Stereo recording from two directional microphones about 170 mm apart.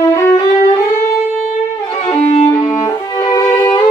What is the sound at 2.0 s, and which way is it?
Violin, 40° left (ahead or behind).